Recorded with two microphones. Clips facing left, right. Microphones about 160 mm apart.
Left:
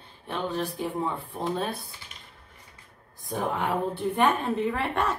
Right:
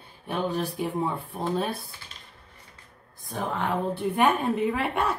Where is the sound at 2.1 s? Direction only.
15° left (ahead or behind).